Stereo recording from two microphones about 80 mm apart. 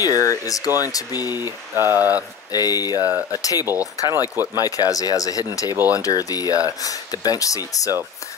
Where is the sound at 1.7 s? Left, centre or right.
Right.